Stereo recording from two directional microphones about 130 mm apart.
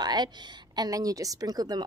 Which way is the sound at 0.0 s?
30° right (ahead or behind).